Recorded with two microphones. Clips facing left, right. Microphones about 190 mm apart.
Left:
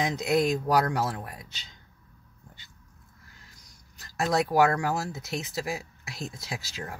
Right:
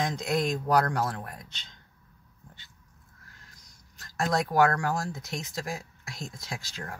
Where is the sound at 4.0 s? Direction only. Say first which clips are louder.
Left 2 dB; 5° left (ahead or behind).